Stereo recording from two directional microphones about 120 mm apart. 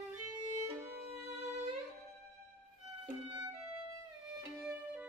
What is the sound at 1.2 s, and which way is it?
Music, 65° right (ahead or behind).